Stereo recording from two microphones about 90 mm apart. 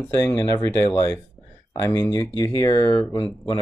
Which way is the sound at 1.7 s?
30° left (ahead or behind).